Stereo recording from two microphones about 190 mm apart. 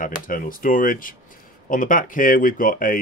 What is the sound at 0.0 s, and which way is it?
Speech, 45° left (ahead or behind).